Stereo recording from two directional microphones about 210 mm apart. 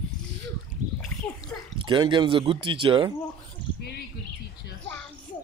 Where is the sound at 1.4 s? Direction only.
25° right (ahead or behind).